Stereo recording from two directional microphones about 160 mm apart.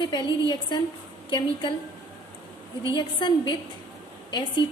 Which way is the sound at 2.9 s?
25° left (ahead or behind).